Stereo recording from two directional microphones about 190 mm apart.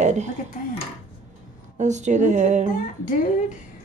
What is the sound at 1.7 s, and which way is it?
Speech, 40° right (ahead or behind).